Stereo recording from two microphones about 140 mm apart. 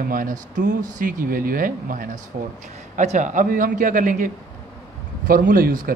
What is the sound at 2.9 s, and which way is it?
A man's voice, 60° right (ahead or behind).